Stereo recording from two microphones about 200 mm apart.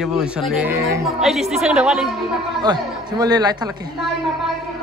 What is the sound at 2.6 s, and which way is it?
A man's voice, 20° right (ahead or behind).